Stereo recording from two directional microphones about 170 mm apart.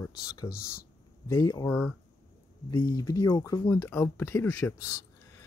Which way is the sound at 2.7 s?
25° left (ahead or behind).